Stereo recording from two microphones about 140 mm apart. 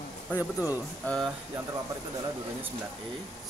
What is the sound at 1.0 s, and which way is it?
Speech, 5° left (ahead or behind).